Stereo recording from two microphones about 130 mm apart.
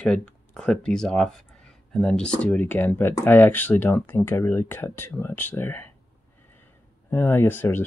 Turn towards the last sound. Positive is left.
turn(degrees=15)  # may be behind; listen again after turning